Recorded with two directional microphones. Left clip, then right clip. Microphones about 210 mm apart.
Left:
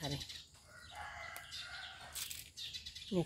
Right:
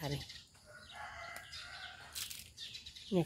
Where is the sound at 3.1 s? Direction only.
25° right (ahead or behind).